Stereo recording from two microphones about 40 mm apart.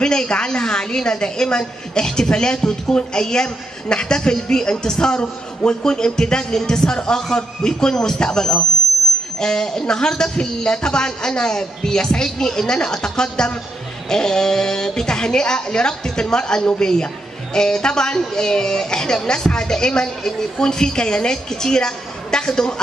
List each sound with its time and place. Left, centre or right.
0.0 s a woman's voice: centre